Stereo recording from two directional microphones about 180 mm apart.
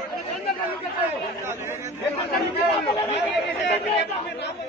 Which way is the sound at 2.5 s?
30° left (ahead or behind).